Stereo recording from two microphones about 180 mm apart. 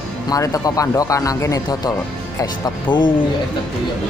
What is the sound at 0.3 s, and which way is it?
Speech, 20° left (ahead or behind).